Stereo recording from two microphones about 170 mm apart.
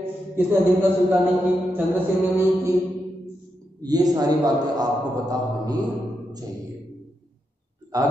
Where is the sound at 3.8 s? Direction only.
20° right (ahead or behind).